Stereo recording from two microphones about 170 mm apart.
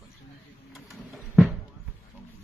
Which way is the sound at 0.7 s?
5° right (ahead or behind).